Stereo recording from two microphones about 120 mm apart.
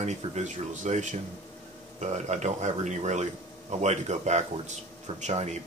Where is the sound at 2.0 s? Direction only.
75° right (ahead or behind).